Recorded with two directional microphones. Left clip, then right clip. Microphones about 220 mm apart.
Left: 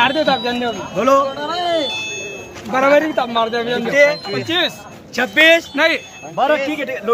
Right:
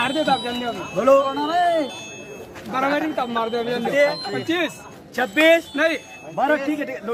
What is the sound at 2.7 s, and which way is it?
Speech, 35° left (ahead or behind).